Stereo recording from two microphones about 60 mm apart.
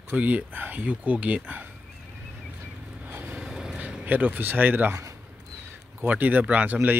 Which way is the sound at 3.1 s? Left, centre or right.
Right.